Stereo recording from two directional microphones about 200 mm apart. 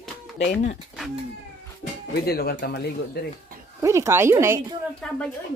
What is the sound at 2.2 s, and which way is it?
Speech, 50° left (ahead or behind).